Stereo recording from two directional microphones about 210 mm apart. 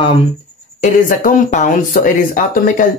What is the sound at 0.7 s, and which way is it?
Speech, 35° left (ahead or behind).